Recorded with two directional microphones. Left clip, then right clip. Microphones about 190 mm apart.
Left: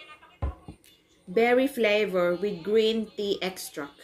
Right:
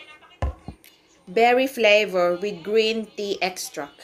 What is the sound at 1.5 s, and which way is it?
A woman's voice, 40° right (ahead or behind).